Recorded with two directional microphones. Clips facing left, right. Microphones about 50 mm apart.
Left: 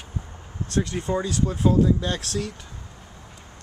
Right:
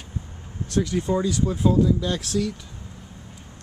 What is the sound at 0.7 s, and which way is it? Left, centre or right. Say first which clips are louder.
Speech: right 2 dB; left.